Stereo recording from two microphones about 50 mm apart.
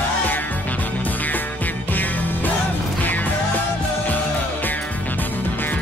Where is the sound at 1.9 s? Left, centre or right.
Left.